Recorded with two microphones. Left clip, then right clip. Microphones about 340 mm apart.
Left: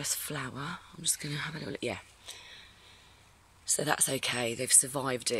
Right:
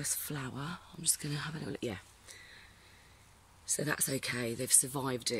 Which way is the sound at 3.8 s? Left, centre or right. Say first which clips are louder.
Left 5 dB; centre.